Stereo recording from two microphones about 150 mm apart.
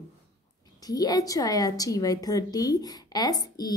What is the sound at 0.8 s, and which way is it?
A woman's voice, 25° left (ahead or behind).